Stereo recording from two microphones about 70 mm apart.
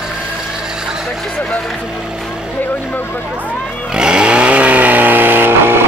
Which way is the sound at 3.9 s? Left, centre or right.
Centre.